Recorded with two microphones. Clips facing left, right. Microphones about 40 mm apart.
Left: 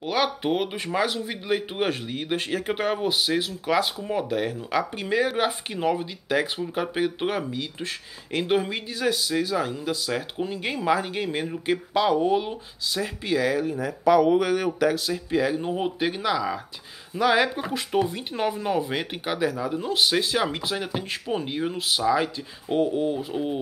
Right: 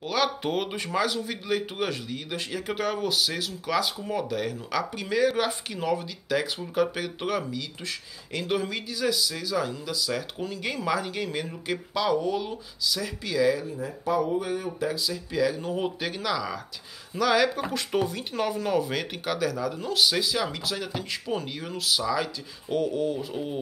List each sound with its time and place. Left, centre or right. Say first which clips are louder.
0.0 s speech: left 2 dB; centre; by 10.2 s left
10.3 s speech: left 3 dB; left
14.9 s speech: left 5 dB; left
15.3 s speech: left 2 dB; left
15.7 s speech: left 3 dB; centre
20.2 s speech: left 3 dB; left
20.4 s speech: left 3 dB; left